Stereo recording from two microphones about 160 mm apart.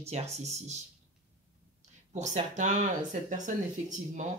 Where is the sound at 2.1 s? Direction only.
45° right (ahead or behind).